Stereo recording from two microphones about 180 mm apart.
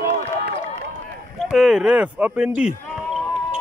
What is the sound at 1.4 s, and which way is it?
Speech, 5° right (ahead or behind).